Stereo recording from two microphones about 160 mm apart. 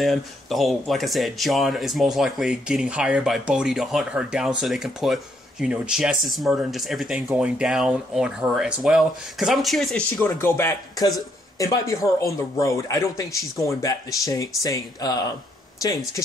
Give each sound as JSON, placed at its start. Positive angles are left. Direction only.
{"t": 0.0, "sound": "speech", "side_deg": 0}
{"t": 10.2, "sound": "speech", "side_deg": 15}